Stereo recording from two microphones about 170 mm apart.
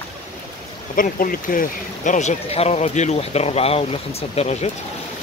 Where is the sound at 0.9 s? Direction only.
55° left (ahead or behind).